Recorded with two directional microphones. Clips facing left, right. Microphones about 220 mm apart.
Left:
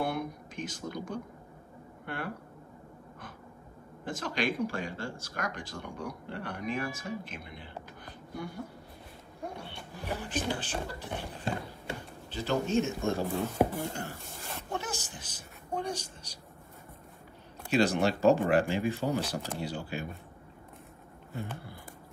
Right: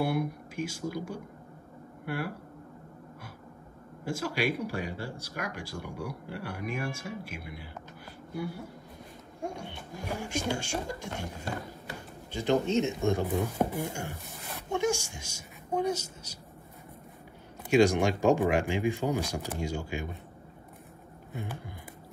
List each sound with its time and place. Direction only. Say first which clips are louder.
0.0 s speech: right 3 dB; 10° right (ahead or behind)
4.0 s speech: right 2 dB; 10° right (ahead or behind)
8.0 s a sound: right 5 dB; 10° right (ahead or behind)
9.7 s speech: right 1 dB; 10° right (ahead or behind)
12.3 s speech: right 3 dB; 15° right (ahead or behind)
17.6 s speech: right 3 dB; 15° right (ahead or behind)
21.4 s speech: even; 15° right (ahead or behind)